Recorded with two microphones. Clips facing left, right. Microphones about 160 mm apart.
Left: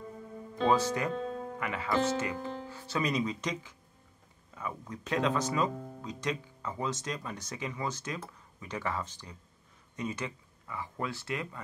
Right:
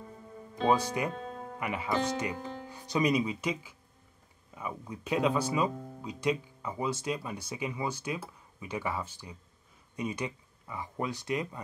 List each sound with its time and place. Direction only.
0.7 s speech: 15° right (ahead or behind)